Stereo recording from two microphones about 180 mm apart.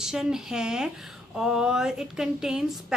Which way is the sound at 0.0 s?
5° right (ahead or behind).